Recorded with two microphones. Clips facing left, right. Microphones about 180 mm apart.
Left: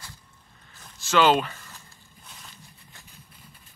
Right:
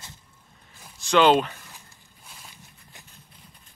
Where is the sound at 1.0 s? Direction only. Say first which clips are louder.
Right 2 dB; 5° left (ahead or behind).